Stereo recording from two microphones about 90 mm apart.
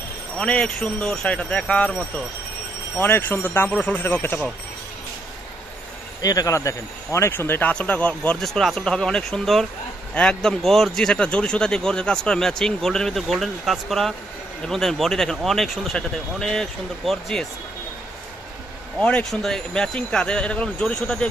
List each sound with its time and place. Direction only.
0.4 s speech: 10° left (ahead or behind)
6.2 s speech: 40° left (ahead or behind); by 8.5 s 15° left (ahead or behind)
8.5 s speech: centre (ahead or behind)
18.9 s speech: 10° left (ahead or behind)